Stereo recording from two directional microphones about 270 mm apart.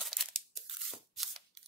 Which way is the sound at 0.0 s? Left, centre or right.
Centre.